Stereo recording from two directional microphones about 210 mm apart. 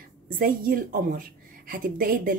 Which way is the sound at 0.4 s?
40° right (ahead or behind).